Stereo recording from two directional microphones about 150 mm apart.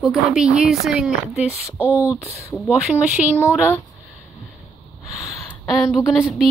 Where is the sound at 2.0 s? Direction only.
20° left (ahead or behind).